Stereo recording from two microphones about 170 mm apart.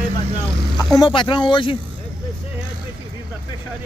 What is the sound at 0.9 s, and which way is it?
Speech, 25° left (ahead or behind).